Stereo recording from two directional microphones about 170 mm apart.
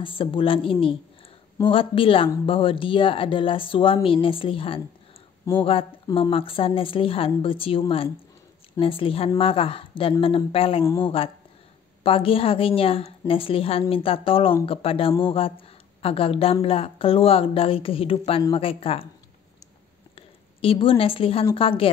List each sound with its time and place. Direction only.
0.0 s speech: 30° left (ahead or behind)
12.0 s speech: 35° left (ahead or behind)
20.2 s a woman's voice: 30° left (ahead or behind)